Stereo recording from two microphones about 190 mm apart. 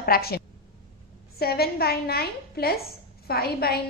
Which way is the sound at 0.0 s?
55° left (ahead or behind).